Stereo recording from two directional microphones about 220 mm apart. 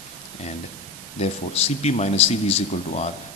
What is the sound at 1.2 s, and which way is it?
A man's voice, 30° left (ahead or behind).